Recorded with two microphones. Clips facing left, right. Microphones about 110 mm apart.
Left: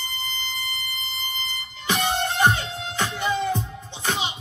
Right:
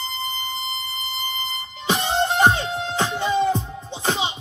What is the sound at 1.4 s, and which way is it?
Music, 25° right (ahead or behind).